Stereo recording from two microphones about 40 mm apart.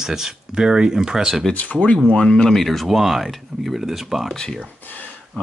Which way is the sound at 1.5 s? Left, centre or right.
Left.